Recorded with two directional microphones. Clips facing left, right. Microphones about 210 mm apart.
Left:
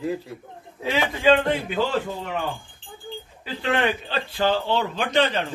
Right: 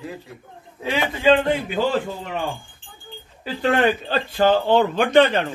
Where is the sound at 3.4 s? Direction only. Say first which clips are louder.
Right 5 dB; 40° right (ahead or behind).